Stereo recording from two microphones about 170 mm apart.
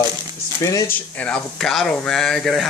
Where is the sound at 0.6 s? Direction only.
15° left (ahead or behind).